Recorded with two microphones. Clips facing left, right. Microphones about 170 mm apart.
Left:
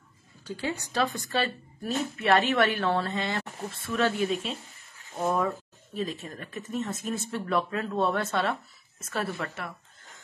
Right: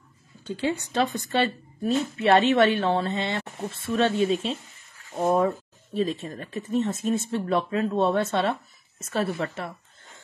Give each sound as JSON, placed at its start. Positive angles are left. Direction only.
{"t": 0.5, "sound": "speech", "side_deg": -25}